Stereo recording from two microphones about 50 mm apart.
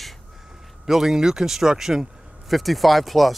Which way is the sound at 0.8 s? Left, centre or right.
Centre.